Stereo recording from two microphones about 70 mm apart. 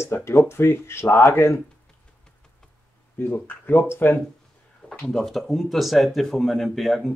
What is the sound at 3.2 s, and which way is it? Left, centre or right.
Speech, left.